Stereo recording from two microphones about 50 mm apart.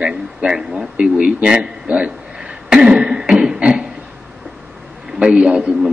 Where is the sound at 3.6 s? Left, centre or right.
Right.